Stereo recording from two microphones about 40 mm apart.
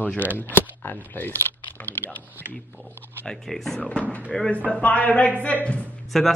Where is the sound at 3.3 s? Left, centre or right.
Centre.